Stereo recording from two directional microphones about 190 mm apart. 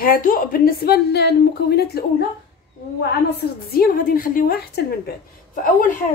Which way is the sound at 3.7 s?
50° left (ahead or behind).